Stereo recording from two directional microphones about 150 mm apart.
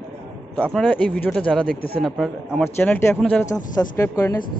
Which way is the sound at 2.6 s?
15° left (ahead or behind).